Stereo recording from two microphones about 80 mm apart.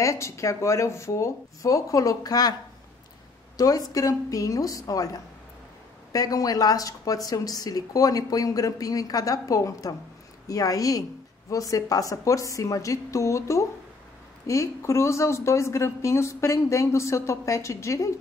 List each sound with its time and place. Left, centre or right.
0.0 s speech: left
3.5 s speech: left